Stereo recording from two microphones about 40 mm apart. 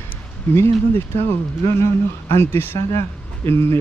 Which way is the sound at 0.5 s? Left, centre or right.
Left.